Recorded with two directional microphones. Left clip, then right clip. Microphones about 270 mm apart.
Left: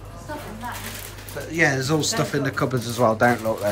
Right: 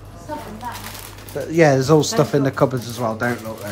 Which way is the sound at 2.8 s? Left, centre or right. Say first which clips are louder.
Left 4 dB; centre.